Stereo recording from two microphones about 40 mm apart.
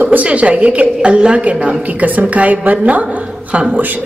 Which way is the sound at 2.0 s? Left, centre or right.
Right.